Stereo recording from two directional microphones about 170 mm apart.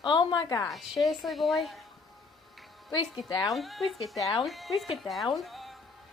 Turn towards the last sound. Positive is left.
turn(degrees=0)  # may be behind; listen again after turning